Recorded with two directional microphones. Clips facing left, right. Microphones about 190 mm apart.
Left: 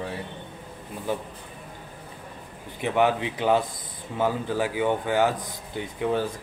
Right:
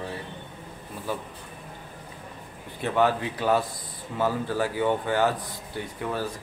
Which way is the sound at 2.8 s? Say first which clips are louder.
Left 1 dB; 15° left (ahead or behind).